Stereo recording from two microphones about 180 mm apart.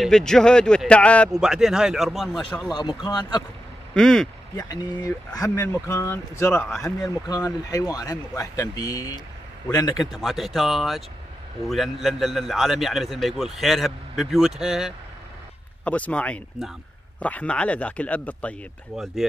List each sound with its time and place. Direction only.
0.0 s a man's voice: 5° left (ahead or behind)
2.7 s speech: 25° left (ahead or behind)
3.9 s speech: 5° left (ahead or behind)
4.6 s speech: 20° left (ahead or behind)
10.1 s a man's voice: centre (ahead or behind)